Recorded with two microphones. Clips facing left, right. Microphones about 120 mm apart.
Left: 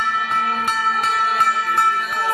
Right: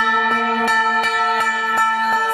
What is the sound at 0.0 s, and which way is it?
Music, 90° right.